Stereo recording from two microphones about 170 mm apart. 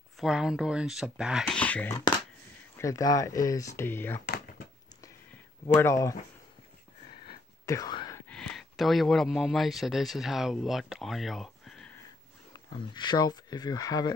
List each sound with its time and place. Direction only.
0.2 s speech: 5° right (ahead or behind)
1.6 s speech: 10° left (ahead or behind)
2.8 s speech: 20° left (ahead or behind)
5.8 s speech: 15° left (ahead or behind)
7.2 s whispering: 20° left (ahead or behind)
8.3 s speech: centre (ahead or behind)
12.6 s speech: 25° left (ahead or behind)